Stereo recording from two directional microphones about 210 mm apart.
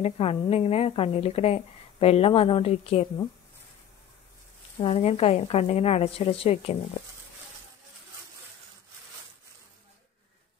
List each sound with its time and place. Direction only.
0.0 s a woman's voice: 30° left (ahead or behind)
4.7 s a woman's voice: 30° left (ahead or behind)